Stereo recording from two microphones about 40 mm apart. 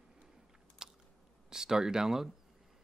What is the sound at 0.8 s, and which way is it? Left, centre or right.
Biting, centre.